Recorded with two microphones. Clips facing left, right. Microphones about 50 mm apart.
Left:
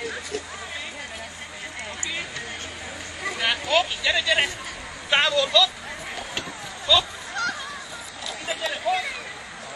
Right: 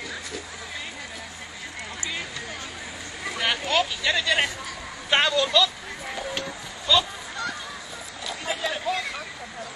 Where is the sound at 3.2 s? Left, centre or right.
Centre.